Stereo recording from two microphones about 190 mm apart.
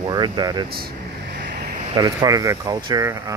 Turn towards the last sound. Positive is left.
turn(degrees=-20)  # may be behind; listen again after turning